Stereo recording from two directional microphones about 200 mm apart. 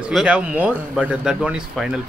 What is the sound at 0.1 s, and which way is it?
Speech, 5° right (ahead or behind).